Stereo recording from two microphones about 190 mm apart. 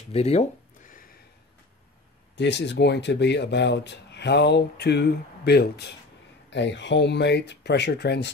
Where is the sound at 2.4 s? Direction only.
65° left (ahead or behind).